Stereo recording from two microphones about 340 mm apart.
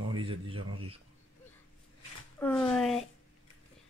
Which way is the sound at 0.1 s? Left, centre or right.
Centre.